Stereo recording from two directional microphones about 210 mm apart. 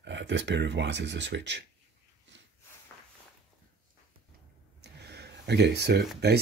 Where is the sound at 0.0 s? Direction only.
55° right (ahead or behind).